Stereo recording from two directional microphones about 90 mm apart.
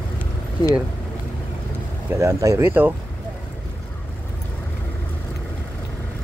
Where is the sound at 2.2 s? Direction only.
35° right (ahead or behind).